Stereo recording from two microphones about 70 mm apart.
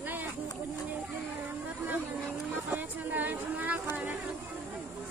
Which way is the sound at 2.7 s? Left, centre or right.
Right.